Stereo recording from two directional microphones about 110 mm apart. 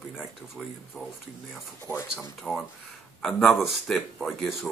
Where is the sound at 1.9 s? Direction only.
20° left (ahead or behind).